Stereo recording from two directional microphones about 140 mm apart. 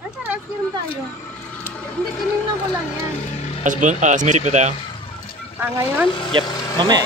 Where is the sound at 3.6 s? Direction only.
65° right (ahead or behind).